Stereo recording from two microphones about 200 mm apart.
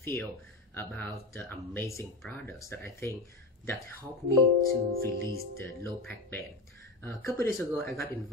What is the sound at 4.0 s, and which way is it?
Speech, 15° right (ahead or behind).